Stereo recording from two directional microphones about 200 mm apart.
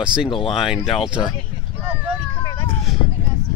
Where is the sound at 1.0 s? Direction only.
25° left (ahead or behind).